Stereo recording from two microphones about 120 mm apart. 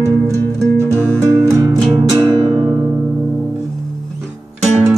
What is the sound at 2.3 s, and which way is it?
Music, 40° right (ahead or behind).